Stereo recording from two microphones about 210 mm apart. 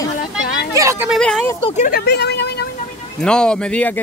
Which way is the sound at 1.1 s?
Centre (ahead or behind).